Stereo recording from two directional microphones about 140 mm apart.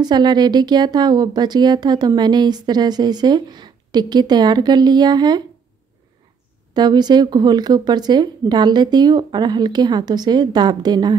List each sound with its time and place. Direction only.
0.0 s a woman's voice: 30° right (ahead or behind)
6.7 s a woman's voice: 30° right (ahead or behind)